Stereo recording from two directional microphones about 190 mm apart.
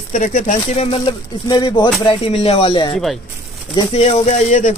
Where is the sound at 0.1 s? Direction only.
40° left (ahead or behind).